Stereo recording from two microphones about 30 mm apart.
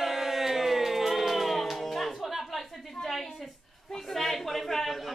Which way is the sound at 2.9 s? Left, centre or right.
Centre.